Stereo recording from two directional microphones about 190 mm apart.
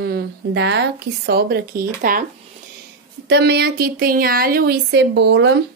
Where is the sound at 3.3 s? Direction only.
60° right (ahead or behind).